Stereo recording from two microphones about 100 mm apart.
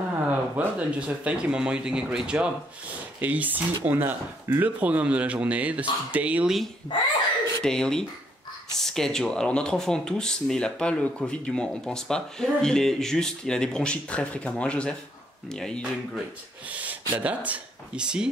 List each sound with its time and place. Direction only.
0.3 s speech: 15° right (ahead or behind)
6.9 s a child's voice: 55° left (ahead or behind)
7.6 s speech: 5° left (ahead or behind)
16.7 s speech: 15° right (ahead or behind)